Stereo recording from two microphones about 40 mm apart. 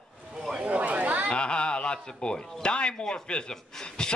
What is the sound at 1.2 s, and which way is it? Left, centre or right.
A man's voice, left.